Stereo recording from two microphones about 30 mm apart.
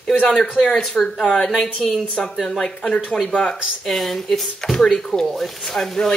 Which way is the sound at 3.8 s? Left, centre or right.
Centre.